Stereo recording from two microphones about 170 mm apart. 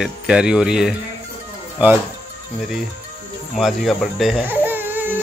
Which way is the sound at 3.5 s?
Centre (ahead or behind).